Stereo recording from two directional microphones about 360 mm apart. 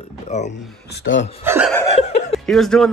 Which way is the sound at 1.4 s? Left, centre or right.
Centre.